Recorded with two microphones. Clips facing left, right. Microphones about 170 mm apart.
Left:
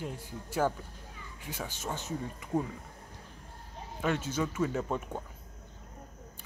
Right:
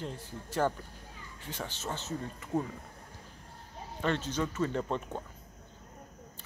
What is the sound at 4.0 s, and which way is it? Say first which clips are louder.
Speech: even; 10° left (ahead or behind).